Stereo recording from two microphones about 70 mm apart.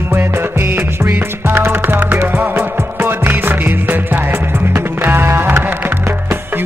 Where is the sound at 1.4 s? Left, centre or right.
Right.